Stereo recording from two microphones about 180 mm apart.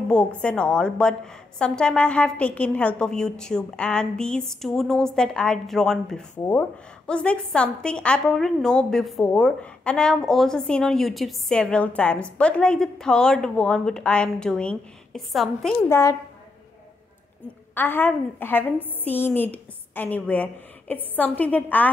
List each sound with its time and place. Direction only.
0.1 s a woman's voice: 5° left (ahead or behind)
15.9 s a woman's voice: 15° left (ahead or behind)
17.7 s a woman's voice: 10° left (ahead or behind)